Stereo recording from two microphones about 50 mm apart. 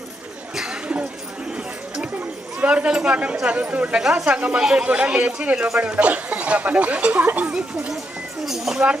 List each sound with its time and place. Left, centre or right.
2.6 s speech: right
4.6 s speech: centre
4.8 s speech: right
8.5 s speech: centre